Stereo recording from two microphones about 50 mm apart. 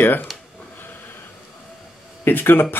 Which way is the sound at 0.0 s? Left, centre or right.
Left.